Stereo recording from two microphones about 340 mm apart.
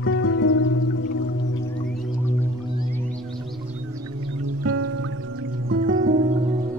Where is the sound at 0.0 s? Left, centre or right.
Left.